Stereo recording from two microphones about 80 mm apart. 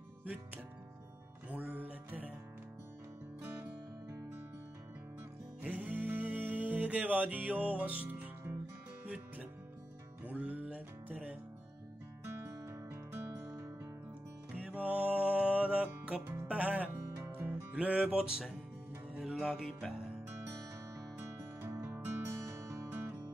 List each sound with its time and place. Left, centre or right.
1.5 s music: right
3.4 s music: right
5.6 s music: right
12.3 s music: right
14.7 s music: centre
20.9 s music: right